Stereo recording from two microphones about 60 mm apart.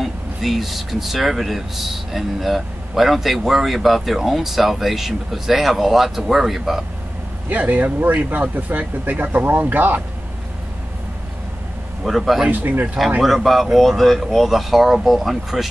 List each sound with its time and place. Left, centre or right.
0.0 s speech: centre
7.4 s speech: right
12.0 s speech: centre
12.4 s speech: right
13.2 s speech: centre